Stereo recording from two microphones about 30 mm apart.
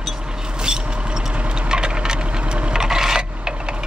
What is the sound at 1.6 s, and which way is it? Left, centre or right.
Wood, right.